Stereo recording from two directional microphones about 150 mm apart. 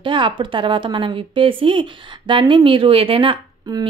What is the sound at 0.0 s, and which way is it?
A woman's voice, 35° right (ahead or behind).